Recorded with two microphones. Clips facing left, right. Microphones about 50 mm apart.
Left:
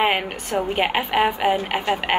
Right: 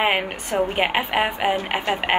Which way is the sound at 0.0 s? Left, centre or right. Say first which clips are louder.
Even; centre.